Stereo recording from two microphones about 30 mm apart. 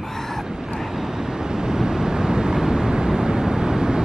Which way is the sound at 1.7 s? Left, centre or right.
Right.